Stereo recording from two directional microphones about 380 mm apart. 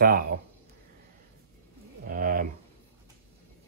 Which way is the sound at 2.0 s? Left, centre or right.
Right.